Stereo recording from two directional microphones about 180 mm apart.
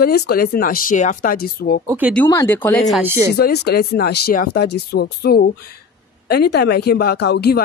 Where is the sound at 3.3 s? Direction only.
65° left (ahead or behind).